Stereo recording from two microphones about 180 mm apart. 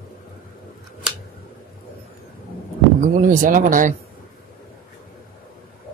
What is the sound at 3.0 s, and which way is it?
Speech, 45° right (ahead or behind).